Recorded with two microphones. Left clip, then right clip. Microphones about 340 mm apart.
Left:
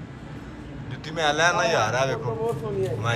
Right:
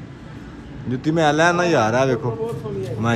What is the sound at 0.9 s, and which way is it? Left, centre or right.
A man's voice, centre.